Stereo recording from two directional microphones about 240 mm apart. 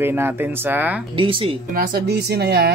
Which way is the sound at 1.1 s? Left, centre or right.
Right.